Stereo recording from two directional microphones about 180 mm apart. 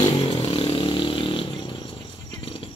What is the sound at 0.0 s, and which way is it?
Vehicle, 25° left (ahead or behind).